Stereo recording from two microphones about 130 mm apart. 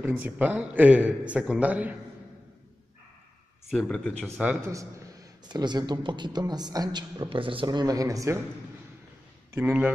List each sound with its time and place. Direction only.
0.0 s a man's voice: 15° right (ahead or behind)
3.7 s speech: 5° left (ahead or behind)
4.6 s a man's voice: 25° right (ahead or behind)
9.5 s a man's voice: 15° right (ahead or behind)